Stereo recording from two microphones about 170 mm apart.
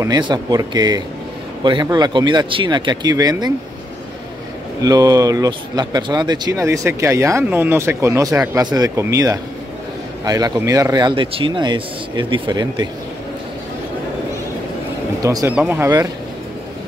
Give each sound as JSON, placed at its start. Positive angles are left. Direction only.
{"t": 0.0, "sound": "speech", "side_deg": -25}
{"t": 4.8, "sound": "speech", "side_deg": -20}
{"t": 15.2, "sound": "speech", "side_deg": -15}